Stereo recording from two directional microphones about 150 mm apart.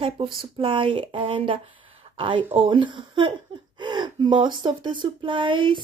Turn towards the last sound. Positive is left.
turn(degrees=-35)  # may be behind; listen again after turning